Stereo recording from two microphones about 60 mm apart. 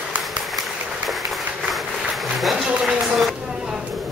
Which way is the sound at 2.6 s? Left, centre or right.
Centre.